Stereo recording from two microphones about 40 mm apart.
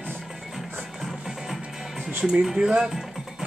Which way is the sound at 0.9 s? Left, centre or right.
Centre.